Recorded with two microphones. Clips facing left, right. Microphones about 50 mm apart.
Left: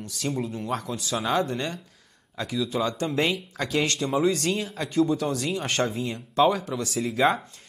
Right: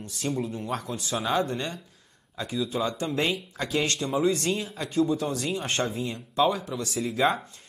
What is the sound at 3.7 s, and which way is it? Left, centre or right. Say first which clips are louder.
Speech: left 2 dB; left.